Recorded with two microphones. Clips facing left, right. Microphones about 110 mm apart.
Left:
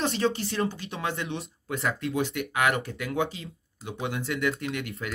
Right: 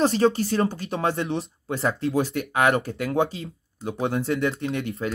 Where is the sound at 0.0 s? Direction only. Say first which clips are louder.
Right 7 dB; 35° right (ahead or behind).